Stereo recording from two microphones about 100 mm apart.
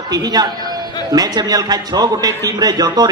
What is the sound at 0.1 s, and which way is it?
A man's voice, 45° right (ahead or behind).